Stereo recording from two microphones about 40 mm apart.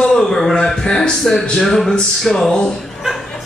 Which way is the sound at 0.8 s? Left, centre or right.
Centre.